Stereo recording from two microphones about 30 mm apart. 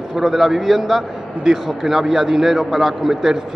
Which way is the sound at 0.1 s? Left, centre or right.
Centre.